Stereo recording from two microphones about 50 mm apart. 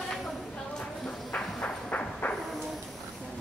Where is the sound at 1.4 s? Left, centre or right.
Left.